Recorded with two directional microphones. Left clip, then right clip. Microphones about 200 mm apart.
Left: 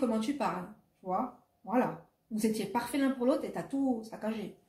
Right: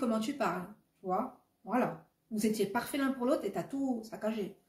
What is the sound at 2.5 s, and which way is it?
Speech, 15° right (ahead or behind).